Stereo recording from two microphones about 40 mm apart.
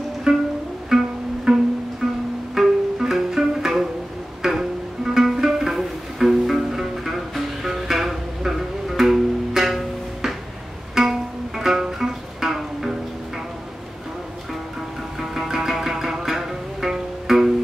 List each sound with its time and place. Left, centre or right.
0.3 s music: centre
11.0 s music: centre
15.1 s music: centre